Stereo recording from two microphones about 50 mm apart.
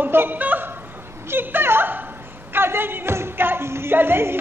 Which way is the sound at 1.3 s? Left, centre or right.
Right.